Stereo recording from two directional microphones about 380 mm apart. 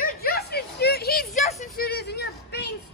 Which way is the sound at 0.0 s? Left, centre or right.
Left.